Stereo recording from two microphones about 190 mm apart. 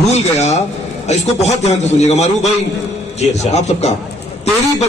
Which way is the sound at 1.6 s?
35° left (ahead or behind).